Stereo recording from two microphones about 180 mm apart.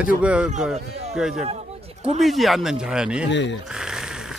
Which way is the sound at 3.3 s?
80° left.